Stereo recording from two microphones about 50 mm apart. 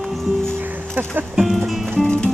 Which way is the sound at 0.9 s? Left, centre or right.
Right.